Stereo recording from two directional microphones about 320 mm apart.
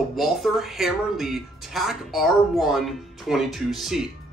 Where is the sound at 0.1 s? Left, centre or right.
Centre.